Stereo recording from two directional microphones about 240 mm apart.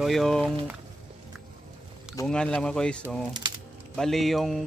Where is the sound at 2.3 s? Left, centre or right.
Centre.